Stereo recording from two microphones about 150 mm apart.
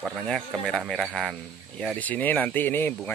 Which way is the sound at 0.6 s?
Centre (ahead or behind).